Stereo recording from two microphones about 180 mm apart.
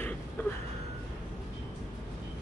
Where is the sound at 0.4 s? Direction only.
10° left (ahead or behind).